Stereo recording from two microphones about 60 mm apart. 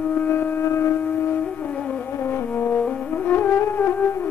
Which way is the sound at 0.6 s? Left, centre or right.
Left.